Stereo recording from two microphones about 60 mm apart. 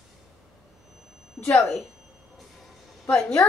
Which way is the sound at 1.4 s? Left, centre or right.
Left.